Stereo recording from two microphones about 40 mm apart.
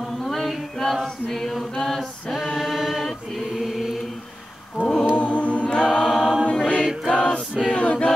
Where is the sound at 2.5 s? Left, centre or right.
Centre.